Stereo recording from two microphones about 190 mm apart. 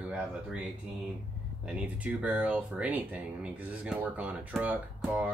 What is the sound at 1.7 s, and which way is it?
Speech, 5° right (ahead or behind).